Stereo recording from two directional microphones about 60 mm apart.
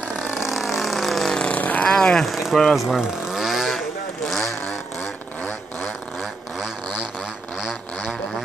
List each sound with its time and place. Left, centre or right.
0.1 s vehicle: centre
1.3 s vehicle: centre
1.6 s vehicle: left
1.9 s speech: centre
3.0 s vehicle: centre